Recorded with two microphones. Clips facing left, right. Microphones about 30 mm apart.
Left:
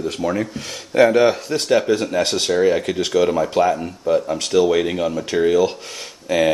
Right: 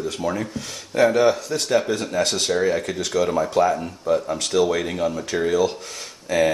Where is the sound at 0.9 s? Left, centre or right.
Left.